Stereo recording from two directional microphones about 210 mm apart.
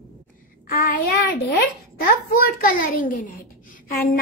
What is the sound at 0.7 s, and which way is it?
A child's voice, 45° left (ahead or behind).